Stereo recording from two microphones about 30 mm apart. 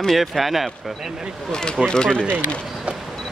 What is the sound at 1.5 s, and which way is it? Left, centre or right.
Speech, left.